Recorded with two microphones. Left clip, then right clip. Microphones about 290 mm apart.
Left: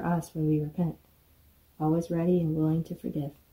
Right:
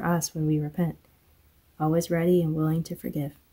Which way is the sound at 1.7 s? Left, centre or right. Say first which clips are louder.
Right 3 dB; right.